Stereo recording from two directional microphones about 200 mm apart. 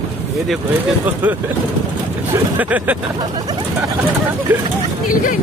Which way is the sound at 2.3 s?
10° right (ahead or behind).